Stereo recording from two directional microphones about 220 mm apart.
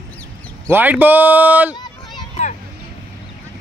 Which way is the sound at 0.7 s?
10° right (ahead or behind).